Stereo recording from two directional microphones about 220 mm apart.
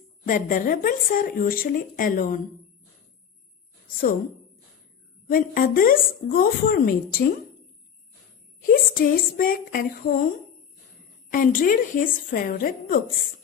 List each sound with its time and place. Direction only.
0.3 s speech: 40° left (ahead or behind)
5.3 s speech: 40° left (ahead or behind)
8.6 s speech: 40° left (ahead or behind)
11.3 s speech: 40° left (ahead or behind)